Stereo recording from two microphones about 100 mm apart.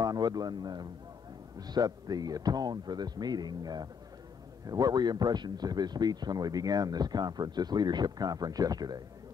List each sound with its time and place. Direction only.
0.0 s speech: 40° right (ahead or behind)